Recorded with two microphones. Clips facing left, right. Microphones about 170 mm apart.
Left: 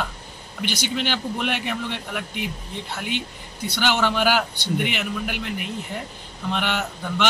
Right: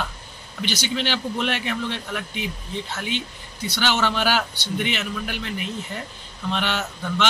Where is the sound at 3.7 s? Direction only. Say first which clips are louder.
Left 1 dB; 10° left (ahead or behind).